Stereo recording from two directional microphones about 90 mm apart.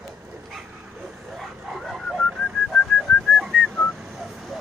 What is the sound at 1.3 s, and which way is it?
Whistling, centre (ahead or behind).